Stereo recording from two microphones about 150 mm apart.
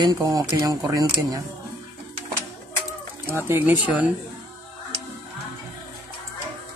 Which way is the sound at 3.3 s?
15° right (ahead or behind).